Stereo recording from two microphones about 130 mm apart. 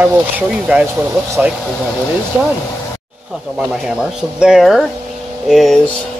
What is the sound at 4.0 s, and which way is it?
Speech, 5° right (ahead or behind).